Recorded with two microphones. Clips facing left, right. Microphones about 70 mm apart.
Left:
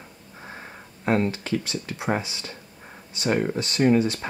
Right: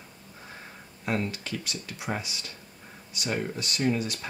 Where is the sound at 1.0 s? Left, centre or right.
Left.